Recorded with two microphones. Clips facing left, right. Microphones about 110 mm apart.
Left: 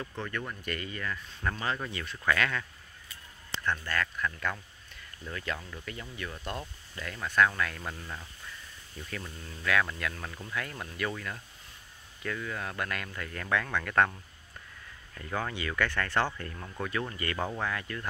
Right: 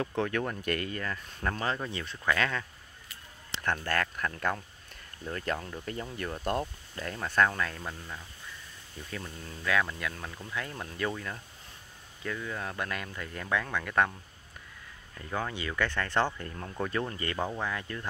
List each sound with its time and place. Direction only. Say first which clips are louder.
0.0 s speech: right 7 dB; 55° right (ahead or behind)
1.0 s speech: right 1 dB; 35° right (ahead or behind)
3.7 s speech: right 2 dB; 50° right (ahead or behind)
6.6 s speech: right 5 dB; 35° right (ahead or behind)
7.8 s speech: even; 5° left (ahead or behind)
9.1 s speech: right 1 dB; 20° right (ahead or behind)
15.1 s speech: even; 20° right (ahead or behind)